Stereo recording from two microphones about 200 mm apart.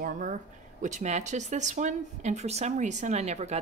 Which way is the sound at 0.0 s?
40° right (ahead or behind).